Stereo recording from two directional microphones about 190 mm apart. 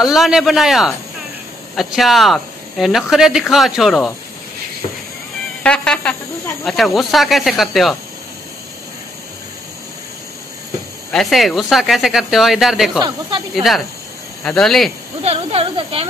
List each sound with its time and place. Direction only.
0.0 s speech: centre (ahead or behind)
5.6 s speech: 5° left (ahead or behind)
11.1 s speech: centre (ahead or behind)
15.2 s speech: 30° right (ahead or behind)